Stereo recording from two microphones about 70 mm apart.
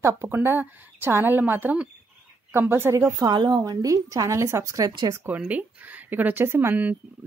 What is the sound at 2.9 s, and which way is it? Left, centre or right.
A woman's voice, right.